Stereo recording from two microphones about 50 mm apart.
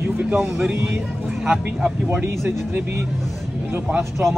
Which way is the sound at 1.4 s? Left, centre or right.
Centre.